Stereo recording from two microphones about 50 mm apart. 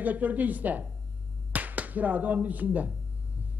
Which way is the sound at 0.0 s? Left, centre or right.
Right.